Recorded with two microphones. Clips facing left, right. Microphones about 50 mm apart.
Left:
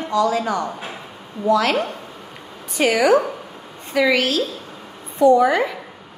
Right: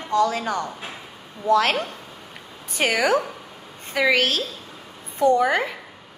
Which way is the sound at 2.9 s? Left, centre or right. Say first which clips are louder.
Left 5 dB; left.